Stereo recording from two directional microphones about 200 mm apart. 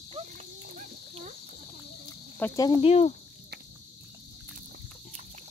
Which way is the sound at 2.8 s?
30° left (ahead or behind).